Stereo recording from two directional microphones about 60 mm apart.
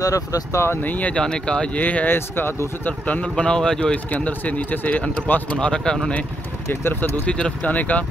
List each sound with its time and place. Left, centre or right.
0.0 s speech: left
0.8 s speech: left
1.2 s speech: centre
1.8 s speech: left
2.1 s speech: left
3.1 s speech: centre
6.7 s speech: left
7.2 s speech: centre